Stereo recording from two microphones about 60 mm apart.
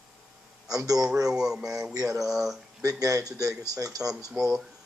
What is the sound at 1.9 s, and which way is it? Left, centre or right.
Speech, right.